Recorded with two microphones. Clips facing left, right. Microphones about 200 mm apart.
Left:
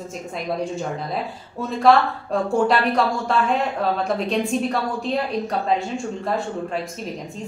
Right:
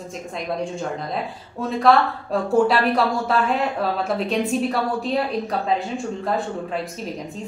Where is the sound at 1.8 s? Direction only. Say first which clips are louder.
Left 1 dB; centre (ahead or behind).